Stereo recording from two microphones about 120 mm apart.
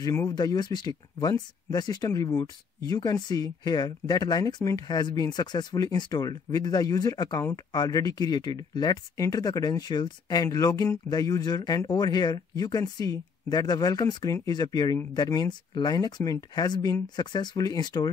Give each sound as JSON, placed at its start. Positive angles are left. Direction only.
{"t": 0.0, "sound": "speech", "side_deg": 25}
{"t": 0.3, "sound": "speech", "side_deg": 35}